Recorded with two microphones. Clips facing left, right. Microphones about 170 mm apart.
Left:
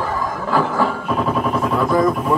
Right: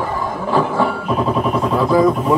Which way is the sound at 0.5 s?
25° right (ahead or behind).